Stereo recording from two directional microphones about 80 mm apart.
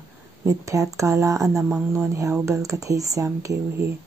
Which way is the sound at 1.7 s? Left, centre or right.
Centre.